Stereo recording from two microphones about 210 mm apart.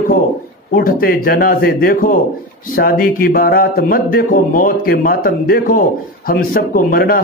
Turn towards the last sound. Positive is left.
turn(degrees=45)  # may be behind; listen again after turning